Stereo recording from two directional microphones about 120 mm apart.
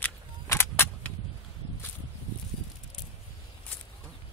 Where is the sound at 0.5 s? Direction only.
20° left (ahead or behind).